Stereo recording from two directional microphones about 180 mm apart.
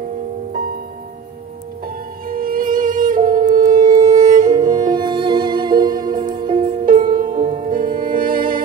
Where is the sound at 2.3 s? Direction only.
50° right (ahead or behind).